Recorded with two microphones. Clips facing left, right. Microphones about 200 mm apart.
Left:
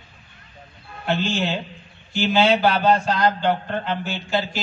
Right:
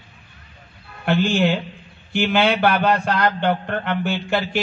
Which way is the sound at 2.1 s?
60° right (ahead or behind).